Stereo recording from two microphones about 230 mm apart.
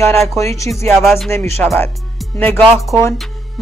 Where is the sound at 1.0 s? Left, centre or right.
Centre.